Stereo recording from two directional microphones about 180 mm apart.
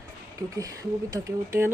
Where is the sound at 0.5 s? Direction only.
20° right (ahead or behind).